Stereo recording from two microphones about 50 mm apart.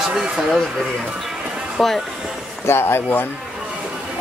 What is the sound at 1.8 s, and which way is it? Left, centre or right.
Speech, centre.